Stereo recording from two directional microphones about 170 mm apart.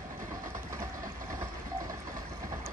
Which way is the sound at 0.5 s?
20° right (ahead or behind).